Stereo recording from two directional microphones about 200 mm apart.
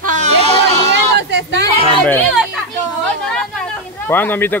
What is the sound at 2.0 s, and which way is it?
Speech, 10° left (ahead or behind).